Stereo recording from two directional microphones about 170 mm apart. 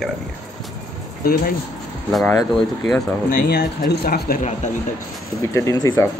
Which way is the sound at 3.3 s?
65° left (ahead or behind).